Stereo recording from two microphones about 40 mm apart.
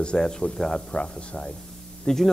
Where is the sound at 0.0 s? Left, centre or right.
Left.